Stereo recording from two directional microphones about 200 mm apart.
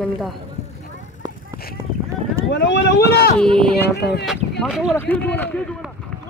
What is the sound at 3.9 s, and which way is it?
Speech, 55° left (ahead or behind).